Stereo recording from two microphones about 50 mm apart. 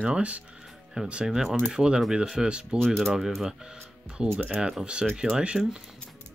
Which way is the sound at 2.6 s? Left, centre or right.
Centre.